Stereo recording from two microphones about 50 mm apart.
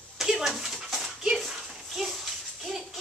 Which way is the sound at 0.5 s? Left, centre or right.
Centre.